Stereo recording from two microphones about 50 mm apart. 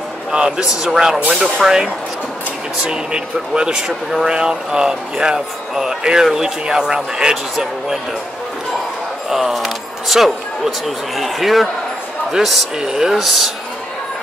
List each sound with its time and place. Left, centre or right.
0.3 s a man's voice: centre
9.3 s speech: centre